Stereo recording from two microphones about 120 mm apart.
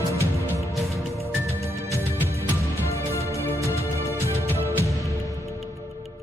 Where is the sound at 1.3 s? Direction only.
15° right (ahead or behind).